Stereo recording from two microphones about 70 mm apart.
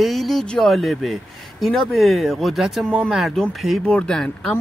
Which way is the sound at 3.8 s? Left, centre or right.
Centre.